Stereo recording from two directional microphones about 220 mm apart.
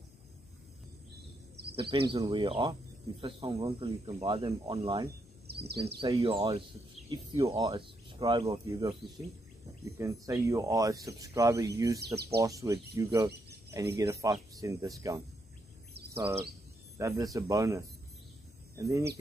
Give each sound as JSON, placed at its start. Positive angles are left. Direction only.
{"t": 1.8, "sound": "speech", "side_deg": -25}
{"t": 5.5, "sound": "bird vocalization", "side_deg": -45}
{"t": 5.9, "sound": "speech", "side_deg": -20}
{"t": 9.9, "sound": "speech", "side_deg": -15}
{"t": 17.0, "sound": "speech", "side_deg": -15}